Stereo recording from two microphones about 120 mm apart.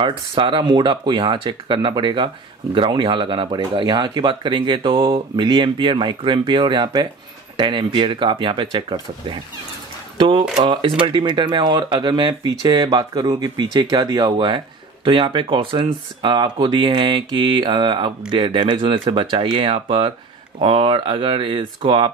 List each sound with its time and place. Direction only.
0.0 s speech: 45° right (ahead or behind)
10.1 s speech: 45° right (ahead or behind)